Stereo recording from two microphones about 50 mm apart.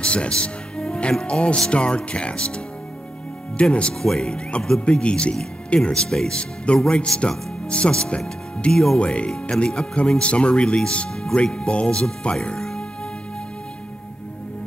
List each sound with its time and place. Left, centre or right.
0.0 s music: left
1.2 s speech: left
4.0 s speech: centre
9.0 s speech: left
12.4 s music: centre